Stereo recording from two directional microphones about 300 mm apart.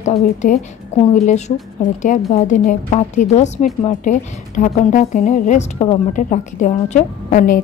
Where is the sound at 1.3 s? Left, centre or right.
Left.